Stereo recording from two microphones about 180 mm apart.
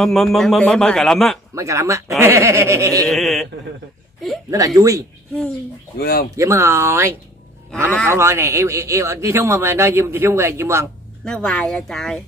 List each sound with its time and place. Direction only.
0.0 s a man's voice: centre (ahead or behind)
1.5 s a man's voice: 15° right (ahead or behind)
3.1 s a man's voice: centre (ahead or behind)
4.5 s speech: 20° right (ahead or behind)
5.9 s speech: 60° left (ahead or behind)
6.3 s a man's voice: 15° right (ahead or behind)
8.1 s a man's voice: 15° right (ahead or behind)
11.2 s a man's voice: 5° left (ahead or behind)